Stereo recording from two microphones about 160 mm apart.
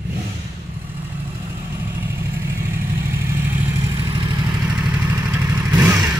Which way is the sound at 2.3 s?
15° right (ahead or behind).